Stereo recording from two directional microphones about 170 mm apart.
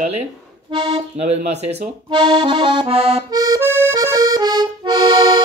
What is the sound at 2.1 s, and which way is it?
Accordion, 25° right (ahead or behind).